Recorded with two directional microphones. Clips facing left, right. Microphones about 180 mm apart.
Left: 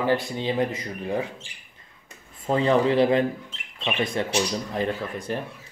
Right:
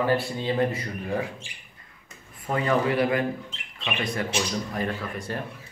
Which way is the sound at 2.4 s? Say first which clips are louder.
Left 4 dB; 25° left (ahead or behind).